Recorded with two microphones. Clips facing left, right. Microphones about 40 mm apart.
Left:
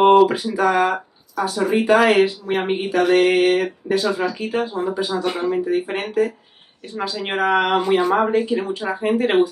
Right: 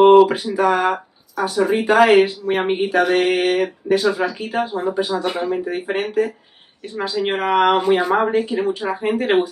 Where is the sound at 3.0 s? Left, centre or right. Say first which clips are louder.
Left 3 dB; centre.